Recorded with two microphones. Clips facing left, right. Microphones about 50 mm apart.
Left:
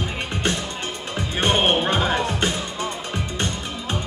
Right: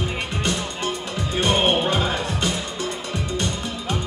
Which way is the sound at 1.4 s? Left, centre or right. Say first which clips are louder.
Even; left.